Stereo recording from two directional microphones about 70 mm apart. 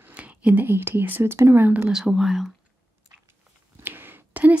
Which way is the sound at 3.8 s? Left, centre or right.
Right.